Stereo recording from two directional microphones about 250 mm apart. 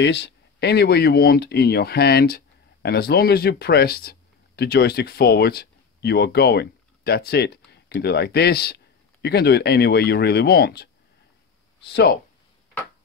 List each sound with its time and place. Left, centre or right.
0.0 s speech: left